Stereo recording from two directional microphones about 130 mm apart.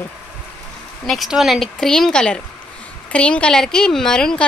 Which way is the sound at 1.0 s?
Centre (ahead or behind).